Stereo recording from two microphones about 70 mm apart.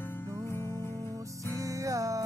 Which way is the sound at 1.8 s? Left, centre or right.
Right.